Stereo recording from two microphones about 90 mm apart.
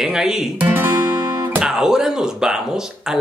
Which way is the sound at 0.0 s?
5° right (ahead or behind).